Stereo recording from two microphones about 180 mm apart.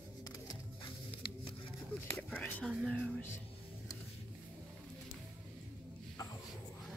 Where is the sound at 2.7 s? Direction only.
Centre (ahead or behind).